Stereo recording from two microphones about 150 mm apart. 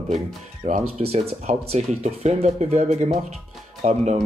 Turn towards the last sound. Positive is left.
turn(degrees=-50)  # may be behind; listen again after turning